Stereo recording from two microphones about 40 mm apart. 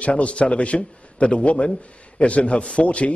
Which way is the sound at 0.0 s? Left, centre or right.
Left.